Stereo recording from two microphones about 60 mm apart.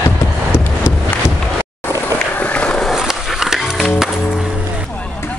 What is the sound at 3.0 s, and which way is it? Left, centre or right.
Music, centre.